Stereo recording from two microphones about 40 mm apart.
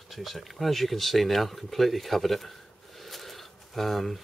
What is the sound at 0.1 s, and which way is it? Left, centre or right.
Speech, centre.